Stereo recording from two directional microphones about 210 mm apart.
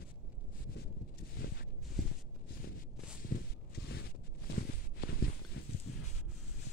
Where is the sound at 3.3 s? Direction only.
50° left (ahead or behind).